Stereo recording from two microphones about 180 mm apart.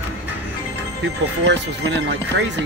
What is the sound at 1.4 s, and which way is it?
Speech, 75° right (ahead or behind).